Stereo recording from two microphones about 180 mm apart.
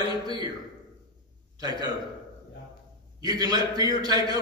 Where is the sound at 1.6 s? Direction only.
20° right (ahead or behind).